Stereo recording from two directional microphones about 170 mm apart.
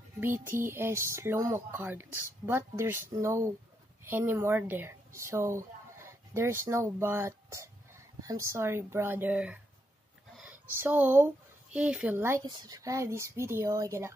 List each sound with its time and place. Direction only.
0.2 s speech: 15° right (ahead or behind)